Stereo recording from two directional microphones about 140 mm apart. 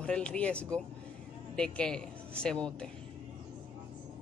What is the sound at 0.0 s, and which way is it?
Speech, 10° left (ahead or behind).